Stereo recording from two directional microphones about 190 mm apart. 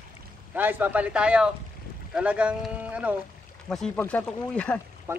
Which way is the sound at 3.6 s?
5° left (ahead or behind).